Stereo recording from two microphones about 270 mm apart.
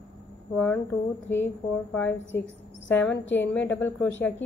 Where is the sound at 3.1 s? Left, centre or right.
Left.